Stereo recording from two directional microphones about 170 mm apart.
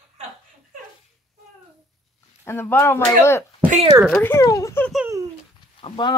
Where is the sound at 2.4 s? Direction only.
15° left (ahead or behind).